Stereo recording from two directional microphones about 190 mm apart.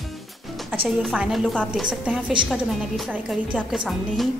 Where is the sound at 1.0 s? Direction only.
5° right (ahead or behind).